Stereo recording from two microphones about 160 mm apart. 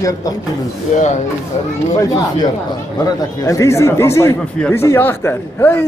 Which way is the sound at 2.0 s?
25° left (ahead or behind).